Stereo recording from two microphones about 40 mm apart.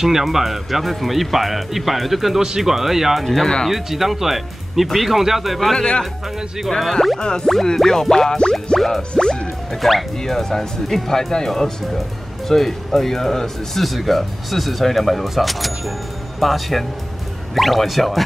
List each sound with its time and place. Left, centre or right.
0.0 s speech: centre
6.8 s speech: centre
7.2 s music: left
7.6 s speech: centre
8.7 s speech: centre
9.1 s music: left
9.8 s speech: centre